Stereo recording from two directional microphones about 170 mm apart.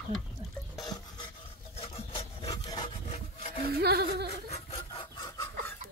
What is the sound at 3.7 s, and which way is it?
Music, 65° right (ahead or behind).